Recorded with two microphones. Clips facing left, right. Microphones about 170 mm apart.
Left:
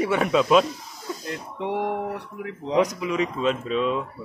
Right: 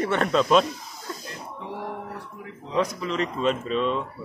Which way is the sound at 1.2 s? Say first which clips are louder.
Left 7 dB; 70° left (ahead or behind).